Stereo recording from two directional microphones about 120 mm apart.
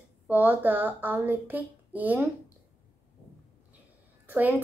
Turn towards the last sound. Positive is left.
turn(degrees=-15)  # may be behind; listen again after turning